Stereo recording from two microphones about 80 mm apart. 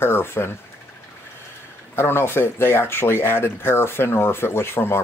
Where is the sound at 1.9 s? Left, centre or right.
Left.